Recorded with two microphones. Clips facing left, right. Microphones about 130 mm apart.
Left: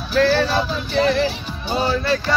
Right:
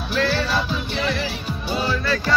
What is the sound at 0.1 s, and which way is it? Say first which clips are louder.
Music: left 5 dB; 40° left (ahead or behind).